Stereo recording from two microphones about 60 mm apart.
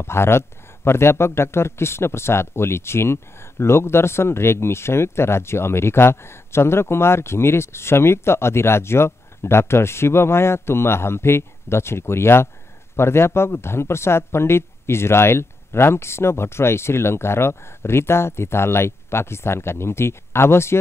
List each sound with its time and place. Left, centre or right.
0.0 s speech: left